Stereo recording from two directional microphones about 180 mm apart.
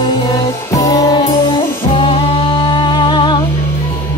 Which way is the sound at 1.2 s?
30° left (ahead or behind).